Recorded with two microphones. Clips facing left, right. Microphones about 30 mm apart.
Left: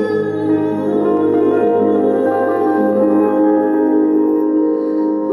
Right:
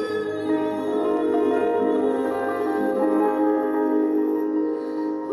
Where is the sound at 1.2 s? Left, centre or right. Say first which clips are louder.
Left 8 dB; left.